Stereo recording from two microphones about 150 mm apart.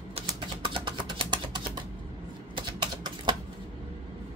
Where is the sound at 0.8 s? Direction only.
30° right (ahead or behind).